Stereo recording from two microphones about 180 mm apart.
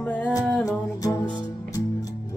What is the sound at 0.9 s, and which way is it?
Music, 20° left (ahead or behind).